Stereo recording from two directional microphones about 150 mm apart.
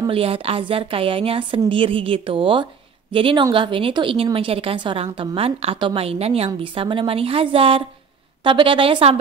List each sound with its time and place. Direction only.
0.0 s a woman's voice: 40° right (ahead or behind)